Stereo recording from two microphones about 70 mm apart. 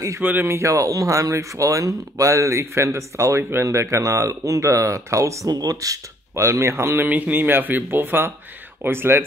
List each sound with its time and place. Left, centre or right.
0.2 s speech: right
0.6 s speech: right
3.6 s speech: right
5.5 s speech: right
6.3 s speech: right
7.1 s speech: right